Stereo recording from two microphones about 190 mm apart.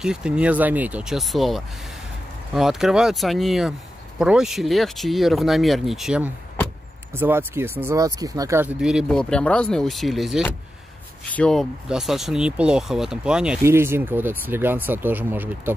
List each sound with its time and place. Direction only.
0.0 s speech: 5° right (ahead or behind)